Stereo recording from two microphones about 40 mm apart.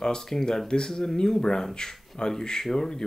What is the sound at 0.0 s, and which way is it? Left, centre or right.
Speech, centre.